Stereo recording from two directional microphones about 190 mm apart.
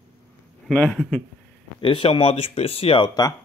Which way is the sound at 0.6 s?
5° left (ahead or behind).